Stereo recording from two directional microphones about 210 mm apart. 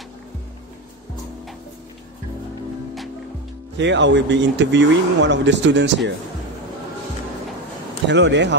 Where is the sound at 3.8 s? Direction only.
60° right (ahead or behind).